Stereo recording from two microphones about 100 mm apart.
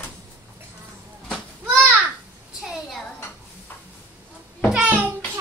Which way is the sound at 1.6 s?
15° right (ahead or behind).